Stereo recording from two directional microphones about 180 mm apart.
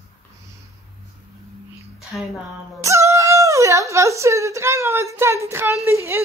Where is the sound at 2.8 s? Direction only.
15° right (ahead or behind).